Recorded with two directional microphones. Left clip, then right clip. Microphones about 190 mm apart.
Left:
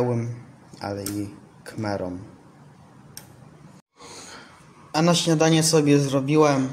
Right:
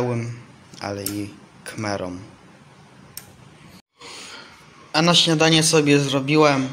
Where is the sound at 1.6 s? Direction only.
10° left (ahead or behind).